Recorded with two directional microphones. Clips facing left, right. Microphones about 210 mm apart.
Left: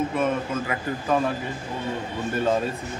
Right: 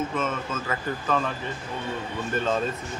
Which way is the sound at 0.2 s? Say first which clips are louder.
Left 5 dB; 15° left (ahead or behind).